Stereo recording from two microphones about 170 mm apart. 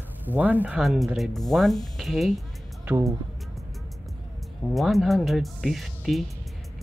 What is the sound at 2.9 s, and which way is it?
Speech, 20° right (ahead or behind).